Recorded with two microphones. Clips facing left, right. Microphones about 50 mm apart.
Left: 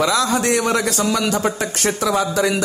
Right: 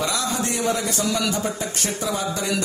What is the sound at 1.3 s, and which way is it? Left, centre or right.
Speech, left.